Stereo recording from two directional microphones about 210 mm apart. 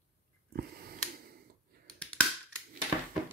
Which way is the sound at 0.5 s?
45° right (ahead or behind).